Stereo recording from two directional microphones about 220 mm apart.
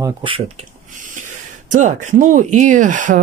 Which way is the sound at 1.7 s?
35° right (ahead or behind).